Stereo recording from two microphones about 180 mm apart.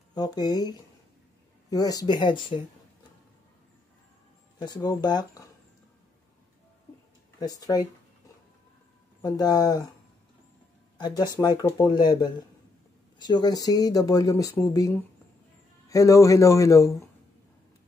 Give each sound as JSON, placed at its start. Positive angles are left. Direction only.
{"t": 0.1, "sound": "speech", "side_deg": 20}
{"t": 4.6, "sound": "speech", "side_deg": 20}
{"t": 7.3, "sound": "speech", "side_deg": 20}
{"t": 9.2, "sound": "speech", "side_deg": 20}
{"t": 11.0, "sound": "speech", "side_deg": 20}